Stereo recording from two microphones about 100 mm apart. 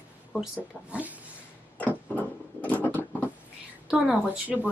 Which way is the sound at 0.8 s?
15° right (ahead or behind).